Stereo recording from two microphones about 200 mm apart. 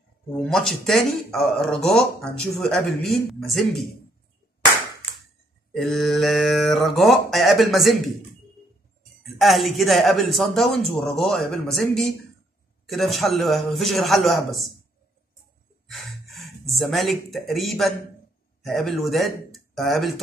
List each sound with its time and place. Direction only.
0.4 s speech: 5° left (ahead or behind)
5.7 s speech: centre (ahead or behind)
9.2 s speech: centre (ahead or behind)
15.9 s speech: centre (ahead or behind)